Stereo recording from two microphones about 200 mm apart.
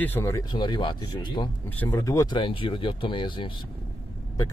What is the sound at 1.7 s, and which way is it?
A man's voice, 10° left (ahead or behind).